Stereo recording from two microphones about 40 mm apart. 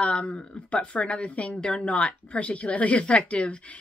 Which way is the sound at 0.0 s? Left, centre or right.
Left.